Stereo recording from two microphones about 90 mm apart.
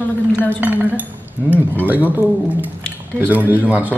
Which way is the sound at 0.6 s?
20° right (ahead or behind).